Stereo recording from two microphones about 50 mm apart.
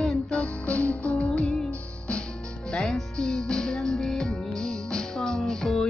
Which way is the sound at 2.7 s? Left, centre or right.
Centre.